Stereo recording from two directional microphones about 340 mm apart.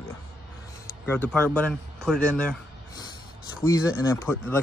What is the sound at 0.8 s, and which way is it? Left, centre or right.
Speech, centre.